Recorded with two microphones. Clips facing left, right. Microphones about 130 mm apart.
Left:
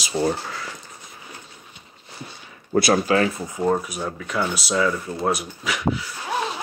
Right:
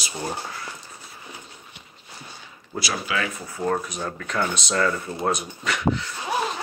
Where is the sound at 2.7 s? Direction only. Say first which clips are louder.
Left 10 dB; 50° left (ahead or behind).